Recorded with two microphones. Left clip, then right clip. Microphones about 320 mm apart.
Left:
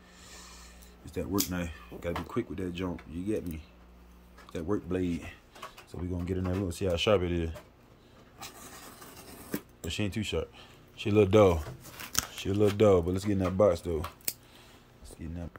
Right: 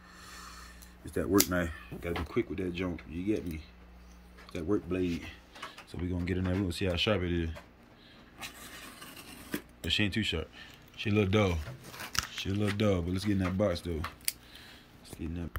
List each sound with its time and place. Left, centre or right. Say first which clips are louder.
0.2 s speech: right 2 dB; centre
4.5 s speech: even; centre
8.4 s train: right 1 dB; centre
9.8 s speech: right 5 dB; centre